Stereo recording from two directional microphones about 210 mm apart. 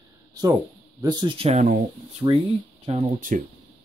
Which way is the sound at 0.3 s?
20° right (ahead or behind).